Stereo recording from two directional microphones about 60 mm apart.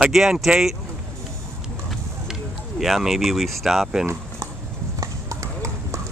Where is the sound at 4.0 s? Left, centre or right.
Right.